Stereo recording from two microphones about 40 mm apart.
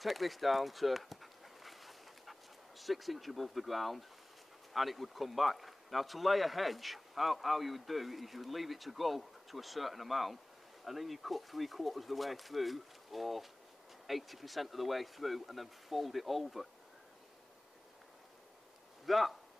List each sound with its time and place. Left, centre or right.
0.0 s dog: centre
2.8 s speech: centre
19.0 s speech: centre